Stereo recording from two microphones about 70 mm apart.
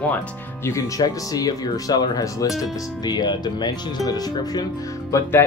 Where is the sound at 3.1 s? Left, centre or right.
Left.